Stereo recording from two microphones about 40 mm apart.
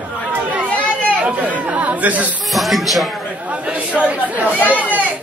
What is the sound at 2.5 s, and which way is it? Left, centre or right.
Speech, centre.